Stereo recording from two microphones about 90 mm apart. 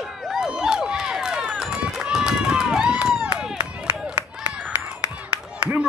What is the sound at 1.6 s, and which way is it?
Run, 5° right (ahead or behind).